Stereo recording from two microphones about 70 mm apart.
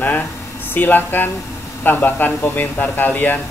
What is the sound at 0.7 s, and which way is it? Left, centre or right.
A man's voice, left.